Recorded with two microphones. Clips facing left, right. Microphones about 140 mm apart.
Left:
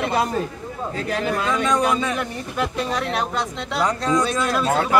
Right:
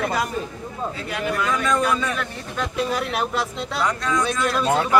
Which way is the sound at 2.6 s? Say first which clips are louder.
Even; 5° right (ahead or behind).